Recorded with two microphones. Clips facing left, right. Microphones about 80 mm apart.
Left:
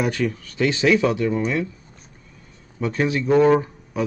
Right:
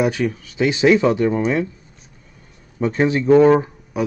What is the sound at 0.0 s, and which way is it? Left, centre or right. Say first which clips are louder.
Speech: right 3 dB; centre.